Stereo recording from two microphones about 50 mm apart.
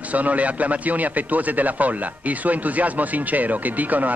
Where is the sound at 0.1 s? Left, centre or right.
Right.